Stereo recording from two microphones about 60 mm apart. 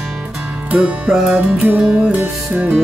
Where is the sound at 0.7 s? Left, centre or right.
Right.